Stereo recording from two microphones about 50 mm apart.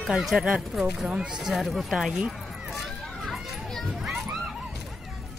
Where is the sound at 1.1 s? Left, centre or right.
Centre.